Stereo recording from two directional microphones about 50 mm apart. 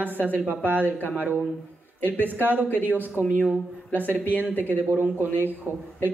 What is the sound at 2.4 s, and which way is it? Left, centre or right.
Speech, right.